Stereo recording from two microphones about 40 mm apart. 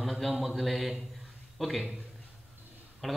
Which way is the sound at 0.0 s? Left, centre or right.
Centre.